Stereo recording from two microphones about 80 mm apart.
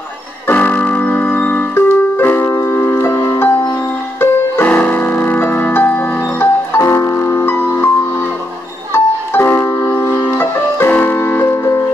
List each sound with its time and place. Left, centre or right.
0.5 s keyboard: centre
2.5 s music: left
4.2 s piano: left
6.8 s music: left
8.9 s music: left